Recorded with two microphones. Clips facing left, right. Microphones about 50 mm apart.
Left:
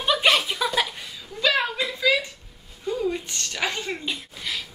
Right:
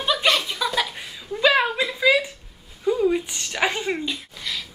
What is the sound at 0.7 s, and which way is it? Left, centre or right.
Laughter, centre.